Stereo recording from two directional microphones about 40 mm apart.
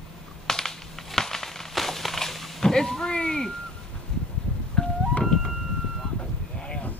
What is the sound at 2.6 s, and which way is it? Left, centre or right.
Speech, centre.